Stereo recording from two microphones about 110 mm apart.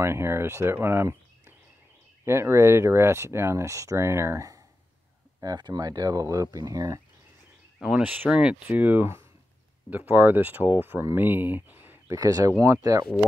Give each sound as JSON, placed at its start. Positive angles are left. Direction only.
{"t": 0.0, "sound": "speech", "side_deg": -25}
{"t": 5.4, "sound": "speech", "side_deg": -35}
{"t": 7.8, "sound": "speech", "side_deg": -10}
{"t": 12.2, "sound": "speech", "side_deg": -35}